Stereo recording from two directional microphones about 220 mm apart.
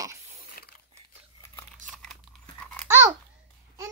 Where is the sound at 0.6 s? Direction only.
40° left (ahead or behind).